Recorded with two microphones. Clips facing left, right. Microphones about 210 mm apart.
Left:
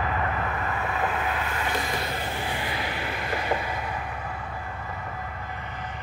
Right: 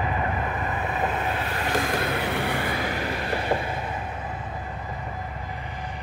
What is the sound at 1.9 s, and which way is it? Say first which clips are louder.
Vehicle: right 5 dB; 60° right (ahead or behind).